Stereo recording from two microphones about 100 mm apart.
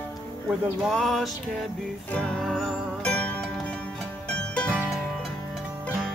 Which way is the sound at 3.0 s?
15° left (ahead or behind).